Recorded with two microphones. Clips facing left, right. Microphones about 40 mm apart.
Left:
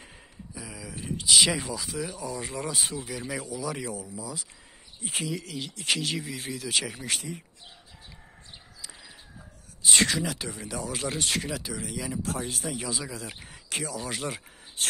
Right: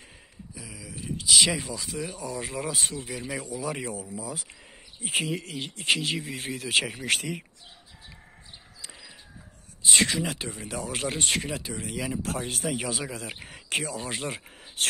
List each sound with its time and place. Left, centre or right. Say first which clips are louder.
0.6 s a sound: left 2 dB; centre
1.0 s speech: even; centre
3.3 s speech: right 1 dB; right
4.2 s speech: right 2 dB; right; by 6.2 s centre
6.2 s speech: right 1 dB; right
7.1 s speech: right 5 dB; right
9.8 s speech: even; centre
10.2 s speech: even; right
10.7 s speech: right 1 dB; right
12.2 s speech: right 1 dB; right
14.0 s speech: even; centre